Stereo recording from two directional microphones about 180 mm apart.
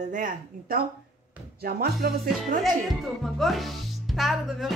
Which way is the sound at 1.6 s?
60° right (ahead or behind).